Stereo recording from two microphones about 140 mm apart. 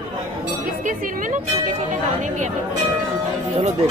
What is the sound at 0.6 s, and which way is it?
Speech, 70° right (ahead or behind).